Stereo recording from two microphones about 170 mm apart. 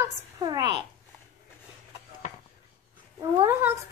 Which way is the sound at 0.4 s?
25° right (ahead or behind).